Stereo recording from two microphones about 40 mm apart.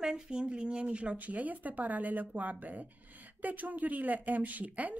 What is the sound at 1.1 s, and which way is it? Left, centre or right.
Speech, right.